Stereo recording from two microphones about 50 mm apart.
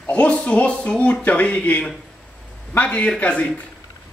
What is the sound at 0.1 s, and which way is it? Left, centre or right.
Speech, left.